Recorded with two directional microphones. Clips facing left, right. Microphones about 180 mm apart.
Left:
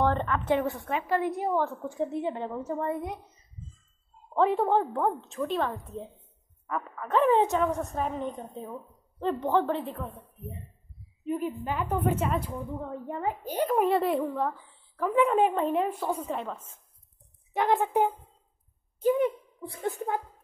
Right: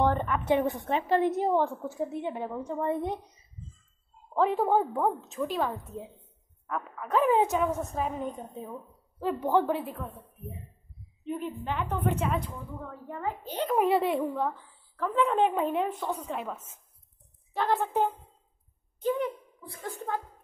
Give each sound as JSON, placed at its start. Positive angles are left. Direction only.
{"t": 0.0, "sound": "a woman's voice", "side_deg": -15}
{"t": 1.8, "sound": "a woman's voice", "side_deg": -5}
{"t": 2.8, "sound": "a woman's voice", "side_deg": -25}
{"t": 4.3, "sound": "a woman's voice", "side_deg": 0}
{"t": 11.2, "sound": "a woman's voice", "side_deg": 5}
{"t": 12.6, "sound": "a child's voice", "side_deg": 20}
{"t": 13.7, "sound": "a woman's voice", "side_deg": 0}
{"t": 15.0, "sound": "a woman's voice", "side_deg": 10}
{"t": 16.3, "sound": "a woman's voice", "side_deg": -10}
{"t": 17.5, "sound": "a child's voice", "side_deg": 20}
{"t": 19.7, "sound": "speech", "side_deg": 25}